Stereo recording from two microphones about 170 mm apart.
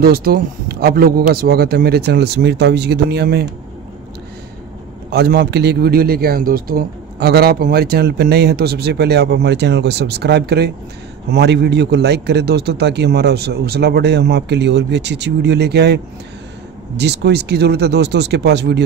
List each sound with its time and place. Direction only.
0.0 s speech: 60° right (ahead or behind)
5.1 s speech: 70° right (ahead or behind)